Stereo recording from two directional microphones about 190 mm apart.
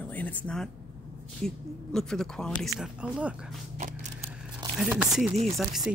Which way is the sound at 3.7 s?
40° right (ahead or behind).